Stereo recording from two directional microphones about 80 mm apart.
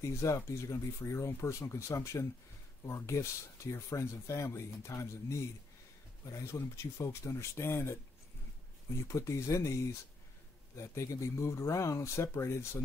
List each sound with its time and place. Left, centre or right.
0.0 s speech: left
9.0 s speech: left